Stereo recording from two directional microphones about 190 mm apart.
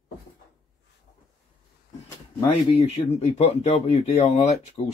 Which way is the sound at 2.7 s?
30° left (ahead or behind).